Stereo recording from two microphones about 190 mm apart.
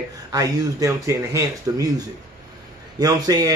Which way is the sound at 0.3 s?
20° right (ahead or behind).